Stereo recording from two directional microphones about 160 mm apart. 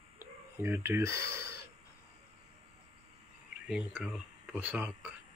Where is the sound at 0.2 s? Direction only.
15° right (ahead or behind).